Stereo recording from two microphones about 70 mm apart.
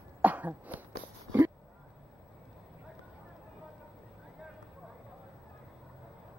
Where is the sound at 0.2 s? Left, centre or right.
Right.